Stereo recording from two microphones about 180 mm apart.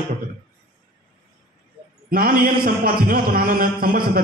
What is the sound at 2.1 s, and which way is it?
A man's voice, 55° right (ahead or behind).